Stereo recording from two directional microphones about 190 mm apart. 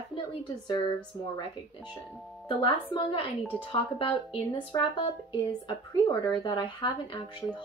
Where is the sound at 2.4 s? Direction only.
25° left (ahead or behind).